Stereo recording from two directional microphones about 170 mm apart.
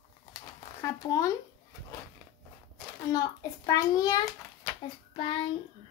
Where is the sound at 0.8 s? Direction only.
20° left (ahead or behind).